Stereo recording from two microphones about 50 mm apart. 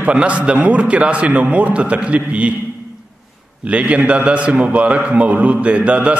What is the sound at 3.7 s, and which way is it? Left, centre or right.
A man's voice, right.